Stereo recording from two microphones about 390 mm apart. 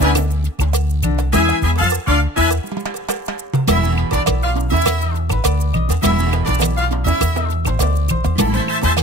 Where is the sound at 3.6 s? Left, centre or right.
Right.